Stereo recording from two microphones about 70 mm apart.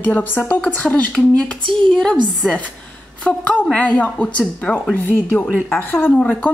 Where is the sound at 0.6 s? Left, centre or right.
Centre.